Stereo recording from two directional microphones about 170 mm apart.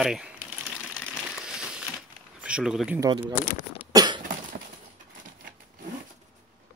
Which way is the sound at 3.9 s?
25° right (ahead or behind).